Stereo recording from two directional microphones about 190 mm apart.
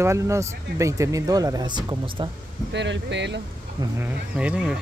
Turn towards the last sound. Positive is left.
turn(degrees=-5)  # may be behind; listen again after turning